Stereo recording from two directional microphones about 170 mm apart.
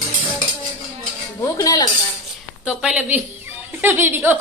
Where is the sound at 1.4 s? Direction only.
20° left (ahead or behind).